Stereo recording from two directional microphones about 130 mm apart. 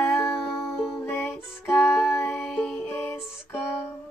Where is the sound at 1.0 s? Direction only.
15° left (ahead or behind).